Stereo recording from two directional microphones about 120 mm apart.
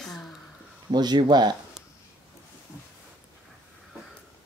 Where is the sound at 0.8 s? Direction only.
40° right (ahead or behind).